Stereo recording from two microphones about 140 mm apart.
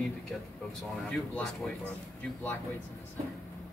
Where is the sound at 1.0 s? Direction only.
5° left (ahead or behind).